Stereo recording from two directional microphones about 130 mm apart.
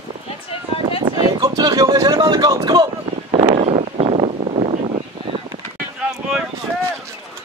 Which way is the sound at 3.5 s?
50° right (ahead or behind).